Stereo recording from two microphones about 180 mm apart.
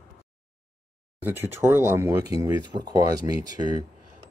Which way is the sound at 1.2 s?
10° right (ahead or behind).